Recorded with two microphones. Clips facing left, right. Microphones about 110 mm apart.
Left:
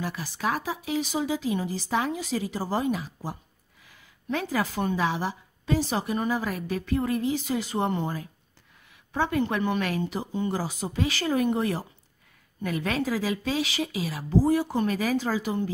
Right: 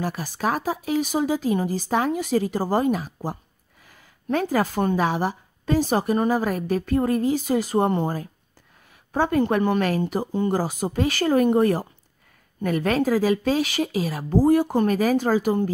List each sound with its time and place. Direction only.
0.0 s speech: 45° right (ahead or behind)